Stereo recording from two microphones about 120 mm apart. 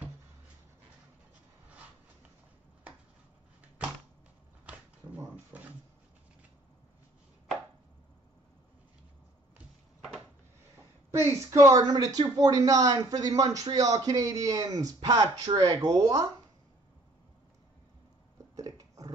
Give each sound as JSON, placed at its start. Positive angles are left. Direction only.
{"t": 4.6, "sound": "shuffling cards", "side_deg": -10}
{"t": 11.1, "sound": "speech", "side_deg": -25}
{"t": 18.6, "sound": "a sound", "side_deg": -30}